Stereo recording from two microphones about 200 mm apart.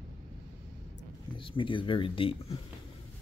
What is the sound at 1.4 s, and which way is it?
Speech, 25° left (ahead or behind).